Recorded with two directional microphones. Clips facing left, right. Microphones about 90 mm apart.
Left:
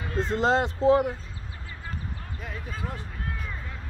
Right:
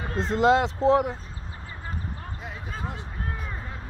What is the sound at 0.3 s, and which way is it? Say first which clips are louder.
Speech: right 4 dB; 60° right (ahead or behind).